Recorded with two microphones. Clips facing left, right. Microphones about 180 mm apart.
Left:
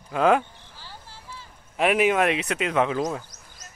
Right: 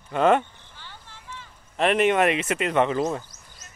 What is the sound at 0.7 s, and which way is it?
Vehicle, 35° left (ahead or behind).